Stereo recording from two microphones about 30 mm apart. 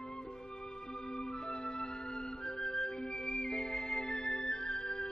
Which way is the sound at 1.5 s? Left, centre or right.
Left.